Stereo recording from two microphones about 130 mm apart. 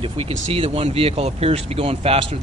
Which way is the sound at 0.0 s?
45° right (ahead or behind).